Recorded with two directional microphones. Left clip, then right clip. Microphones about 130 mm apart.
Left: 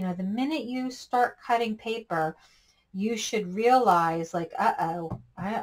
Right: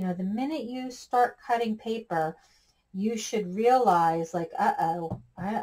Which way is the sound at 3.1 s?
30° left (ahead or behind).